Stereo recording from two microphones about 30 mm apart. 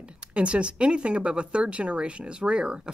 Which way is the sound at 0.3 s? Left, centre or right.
Right.